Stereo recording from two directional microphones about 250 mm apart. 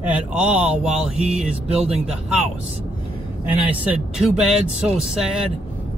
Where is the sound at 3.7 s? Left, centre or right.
Centre.